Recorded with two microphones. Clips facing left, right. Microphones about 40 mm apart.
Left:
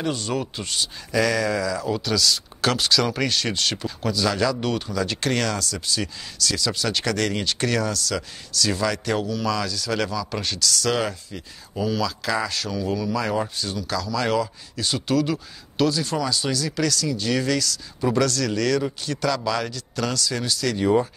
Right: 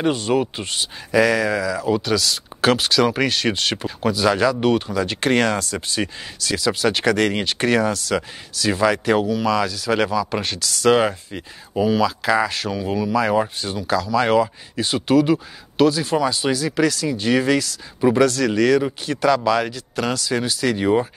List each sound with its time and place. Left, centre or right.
0.0 s speech: right